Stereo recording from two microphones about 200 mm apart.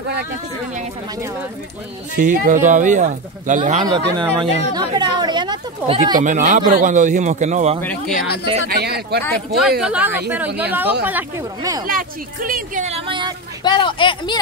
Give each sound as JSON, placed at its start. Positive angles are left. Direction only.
{"t": 2.1, "sound": "speech", "side_deg": -40}
{"t": 3.8, "sound": "speech", "side_deg": -20}
{"t": 6.2, "sound": "speech", "side_deg": -40}
{"t": 8.6, "sound": "speech", "side_deg": -55}
{"t": 9.6, "sound": "speech", "side_deg": -5}
{"t": 11.8, "sound": "speech", "side_deg": -45}
{"t": 13.7, "sound": "speech", "side_deg": 25}